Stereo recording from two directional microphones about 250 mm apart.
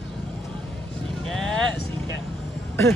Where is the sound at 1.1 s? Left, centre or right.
Centre.